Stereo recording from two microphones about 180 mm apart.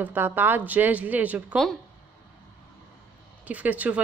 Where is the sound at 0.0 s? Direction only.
10° right (ahead or behind).